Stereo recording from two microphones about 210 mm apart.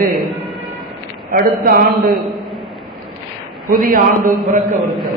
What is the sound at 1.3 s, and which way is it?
Speech, 45° right (ahead or behind).